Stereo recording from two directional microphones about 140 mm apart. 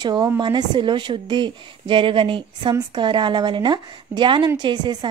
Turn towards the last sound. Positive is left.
turn(degrees=-35)  # may be behind; listen again after turning